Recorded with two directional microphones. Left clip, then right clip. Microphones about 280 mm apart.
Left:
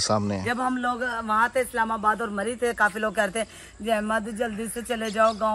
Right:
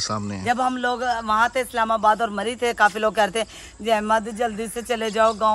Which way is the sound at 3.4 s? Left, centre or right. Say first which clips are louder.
Right 4 dB; right.